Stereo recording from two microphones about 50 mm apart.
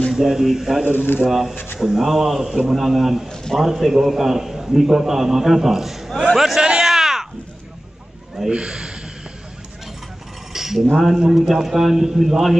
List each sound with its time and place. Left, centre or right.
0.1 s a man's voice: centre
0.9 s speech: left
1.2 s a man's voice: centre
6.3 s a sound: centre
8.5 s speech: centre
10.5 s cutlery: centre
11.0 s a man's voice: centre